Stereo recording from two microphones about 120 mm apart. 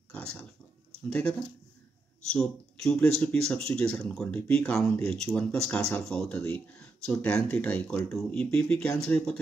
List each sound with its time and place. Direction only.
2.3 s speech: 5° left (ahead or behind)